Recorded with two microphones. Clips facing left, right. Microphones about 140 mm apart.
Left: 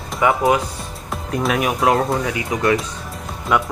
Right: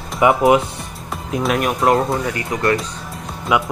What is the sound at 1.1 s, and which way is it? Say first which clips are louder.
Speech: right 1 dB; centre (ahead or behind).